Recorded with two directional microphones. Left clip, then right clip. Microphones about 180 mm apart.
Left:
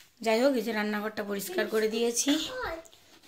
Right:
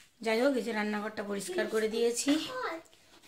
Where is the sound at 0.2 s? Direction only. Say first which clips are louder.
Left 3 dB; 15° left (ahead or behind).